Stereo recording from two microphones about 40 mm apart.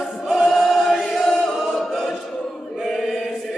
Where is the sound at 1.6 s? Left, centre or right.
Centre.